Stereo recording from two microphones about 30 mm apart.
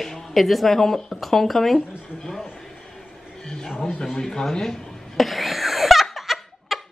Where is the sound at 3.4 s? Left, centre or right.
Centre.